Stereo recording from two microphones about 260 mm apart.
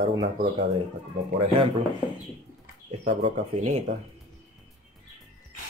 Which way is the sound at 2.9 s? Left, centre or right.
Right.